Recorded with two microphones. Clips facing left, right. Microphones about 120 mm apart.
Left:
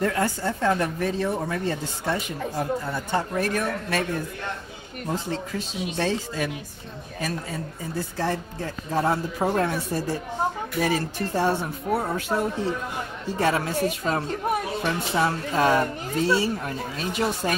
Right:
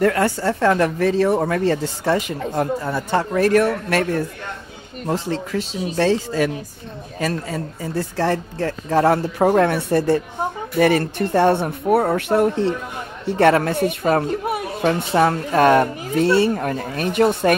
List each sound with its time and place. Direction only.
0.0 s speech: 75° right (ahead or behind)
5.0 s speech: 90° right; by 17.6 s 60° right (ahead or behind)